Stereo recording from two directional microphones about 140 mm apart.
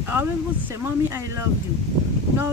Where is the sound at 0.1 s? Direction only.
15° right (ahead or behind).